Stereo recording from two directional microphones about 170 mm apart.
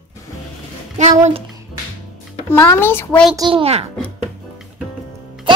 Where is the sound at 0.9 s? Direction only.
45° right (ahead or behind).